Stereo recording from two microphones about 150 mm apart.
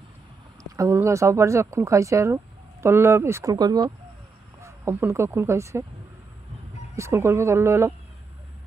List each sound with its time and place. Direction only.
0.7 s speech: 20° right (ahead or behind)
7.0 s speech: 20° right (ahead or behind)